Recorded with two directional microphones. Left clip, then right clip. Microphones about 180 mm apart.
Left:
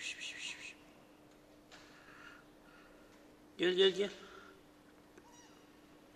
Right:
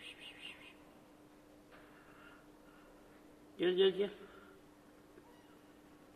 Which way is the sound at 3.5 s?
10° left (ahead or behind).